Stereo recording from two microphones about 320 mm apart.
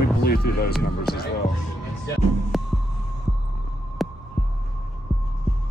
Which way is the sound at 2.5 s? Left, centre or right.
Centre.